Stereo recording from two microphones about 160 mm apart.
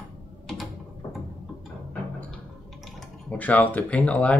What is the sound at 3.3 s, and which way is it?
Speech, 10° left (ahead or behind).